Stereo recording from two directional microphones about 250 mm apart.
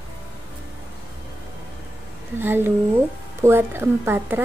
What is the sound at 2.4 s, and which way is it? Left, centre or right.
A woman's voice, centre.